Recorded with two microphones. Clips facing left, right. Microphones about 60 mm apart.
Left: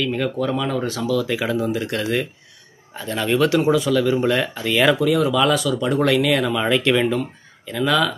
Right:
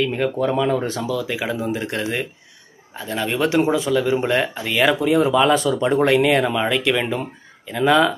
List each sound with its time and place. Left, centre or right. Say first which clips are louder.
0.0 s speech: right 2 dB; right
1.1 s speech: left 3 dB; centre
2.9 s speech: left 2 dB; centre
3.3 s speech: left 1 dB; right
4.6 s speech: left 2 dB; centre
5.0 s speech: right 1 dB; right
6.7 s speech: left 2 dB; centre
7.6 s speech: right 3 dB; right